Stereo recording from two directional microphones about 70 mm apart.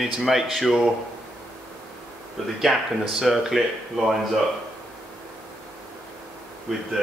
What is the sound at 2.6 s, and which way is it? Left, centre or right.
Speech, centre.